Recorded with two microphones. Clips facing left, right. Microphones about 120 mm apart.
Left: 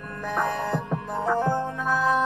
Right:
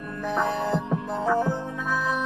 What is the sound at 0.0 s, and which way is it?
Music, 10° right (ahead or behind).